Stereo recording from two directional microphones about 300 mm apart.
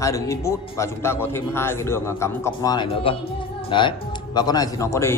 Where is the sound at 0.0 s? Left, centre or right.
Centre.